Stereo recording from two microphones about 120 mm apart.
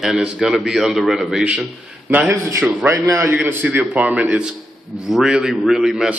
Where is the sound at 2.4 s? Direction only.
25° right (ahead or behind); by 6.2 s 5° right (ahead or behind).